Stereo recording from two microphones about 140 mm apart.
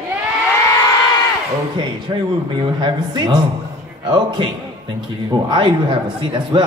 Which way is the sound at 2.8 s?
30° right (ahead or behind).